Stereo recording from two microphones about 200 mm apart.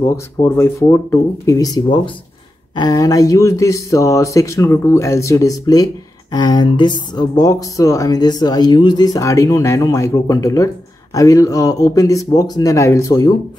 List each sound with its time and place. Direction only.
0.0 s speech: 10° left (ahead or behind)